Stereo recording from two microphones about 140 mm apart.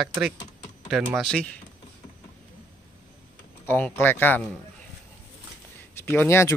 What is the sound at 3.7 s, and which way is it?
Speech, 15° left (ahead or behind).